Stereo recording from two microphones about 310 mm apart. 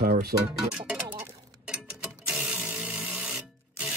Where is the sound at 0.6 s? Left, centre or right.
Centre.